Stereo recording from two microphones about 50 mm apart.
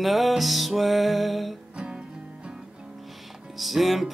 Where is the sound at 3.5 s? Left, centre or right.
Centre.